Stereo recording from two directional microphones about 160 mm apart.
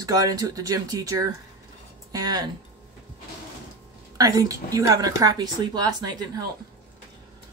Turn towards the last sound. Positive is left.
turn(degrees=-25)  # may be behind; listen again after turning